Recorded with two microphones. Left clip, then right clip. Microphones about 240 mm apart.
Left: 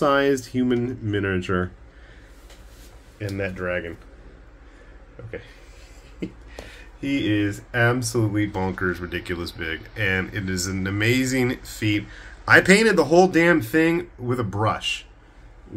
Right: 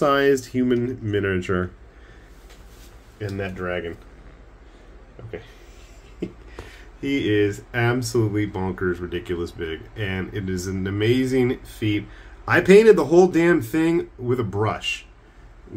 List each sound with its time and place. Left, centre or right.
0.0 s speech: centre
3.2 s speech: centre
7.0 s speech: centre